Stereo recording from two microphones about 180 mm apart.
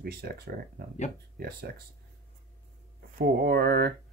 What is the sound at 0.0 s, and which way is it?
Speech, 60° right (ahead or behind).